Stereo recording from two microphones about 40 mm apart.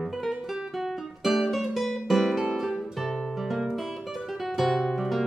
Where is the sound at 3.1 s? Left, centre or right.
Centre.